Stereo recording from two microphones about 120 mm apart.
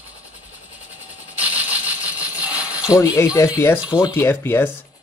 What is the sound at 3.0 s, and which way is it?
Speech, 25° left (ahead or behind).